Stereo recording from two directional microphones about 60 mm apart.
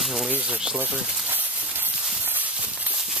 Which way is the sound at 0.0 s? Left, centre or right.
Centre.